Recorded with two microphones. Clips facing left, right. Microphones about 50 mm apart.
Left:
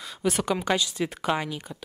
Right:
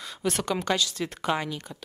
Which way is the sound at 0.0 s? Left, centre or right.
Centre.